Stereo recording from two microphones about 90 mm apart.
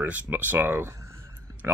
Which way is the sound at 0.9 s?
30° right (ahead or behind).